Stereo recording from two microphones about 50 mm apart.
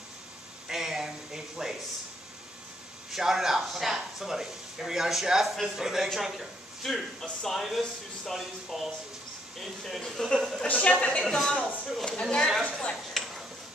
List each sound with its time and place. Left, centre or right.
0.7 s speech: centre
3.1 s speech: centre
10.7 s a woman's voice: left
11.2 s speech: centre
13.2 s tick-tock: centre